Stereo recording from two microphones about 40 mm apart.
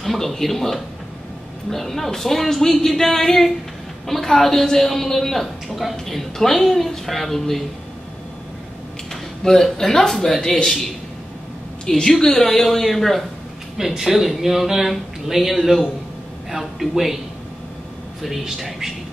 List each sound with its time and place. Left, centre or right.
0.0 s a woman's voice: centre
9.1 s a woman's voice: centre
12.1 s a woman's voice: centre
13.7 s speech: centre
18.4 s speech: centre